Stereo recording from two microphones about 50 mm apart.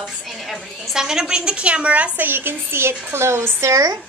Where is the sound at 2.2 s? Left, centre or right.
Right.